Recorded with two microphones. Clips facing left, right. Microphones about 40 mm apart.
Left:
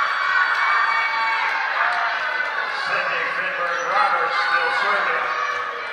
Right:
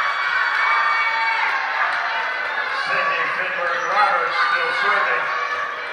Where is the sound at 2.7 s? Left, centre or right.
Centre.